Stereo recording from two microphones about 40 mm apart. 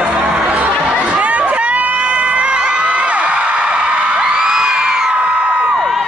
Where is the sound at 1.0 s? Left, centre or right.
Right.